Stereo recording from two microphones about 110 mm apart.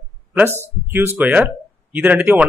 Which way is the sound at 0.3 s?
15° right (ahead or behind).